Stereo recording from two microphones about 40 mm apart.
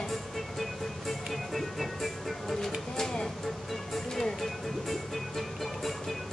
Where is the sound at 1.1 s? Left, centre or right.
Centre.